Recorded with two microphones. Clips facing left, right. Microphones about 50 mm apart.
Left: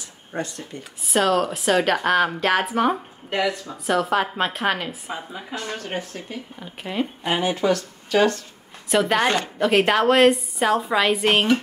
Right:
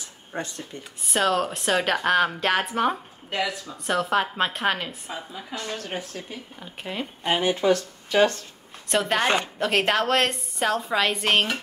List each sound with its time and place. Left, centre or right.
1.0 s a woman's voice: centre
5.6 s speech: left
6.3 s a woman's voice: centre
7.6 s speech: right
8.8 s a woman's voice: centre